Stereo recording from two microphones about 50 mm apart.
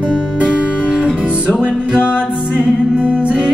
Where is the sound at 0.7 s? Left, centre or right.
Right.